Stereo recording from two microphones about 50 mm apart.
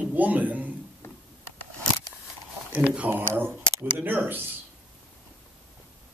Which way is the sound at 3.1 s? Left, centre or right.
Right.